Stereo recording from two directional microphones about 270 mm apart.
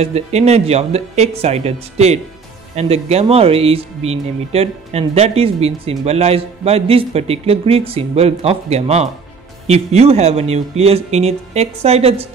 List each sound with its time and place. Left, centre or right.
0.0 s speech: right